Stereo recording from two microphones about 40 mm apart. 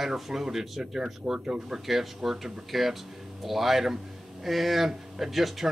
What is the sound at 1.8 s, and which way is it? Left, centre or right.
Speech, centre.